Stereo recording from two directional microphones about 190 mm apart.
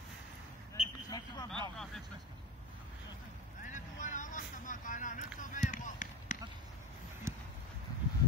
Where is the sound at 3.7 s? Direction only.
40° left (ahead or behind).